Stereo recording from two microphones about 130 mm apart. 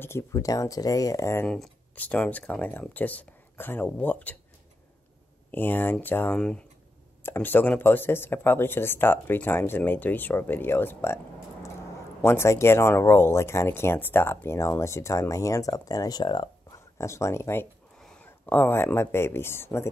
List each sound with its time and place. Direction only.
0.0 s speech: 20° left (ahead or behind)
1.5 s speech: 10° left (ahead or behind)
5.5 s speech: 15° left (ahead or behind)
12.2 s speech: 20° left (ahead or behind); by 16.4 s 35° left (ahead or behind)
16.7 s speech: 20° left (ahead or behind)
17.9 s speech: 5° left (ahead or behind)